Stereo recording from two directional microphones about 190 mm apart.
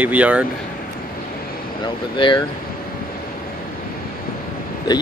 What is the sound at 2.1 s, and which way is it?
Speech, 25° left (ahead or behind).